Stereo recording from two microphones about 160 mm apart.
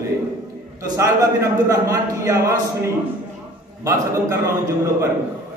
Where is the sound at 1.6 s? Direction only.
20° right (ahead or behind).